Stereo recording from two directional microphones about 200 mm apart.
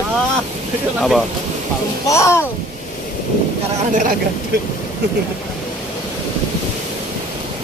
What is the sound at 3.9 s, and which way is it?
Speech, 40° right (ahead or behind).